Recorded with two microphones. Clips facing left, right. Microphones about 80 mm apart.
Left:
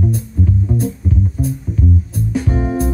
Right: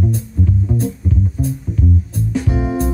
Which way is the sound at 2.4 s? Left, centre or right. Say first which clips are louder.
Left 1 dB; centre.